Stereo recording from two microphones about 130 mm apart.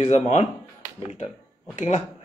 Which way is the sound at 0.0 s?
55° left (ahead or behind).